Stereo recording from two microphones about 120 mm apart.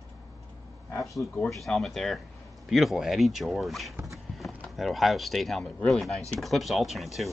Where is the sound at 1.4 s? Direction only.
Centre (ahead or behind).